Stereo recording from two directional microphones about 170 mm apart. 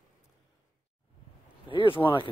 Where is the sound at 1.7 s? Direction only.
30° left (ahead or behind).